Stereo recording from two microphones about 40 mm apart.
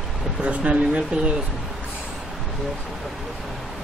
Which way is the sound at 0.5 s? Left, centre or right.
Right.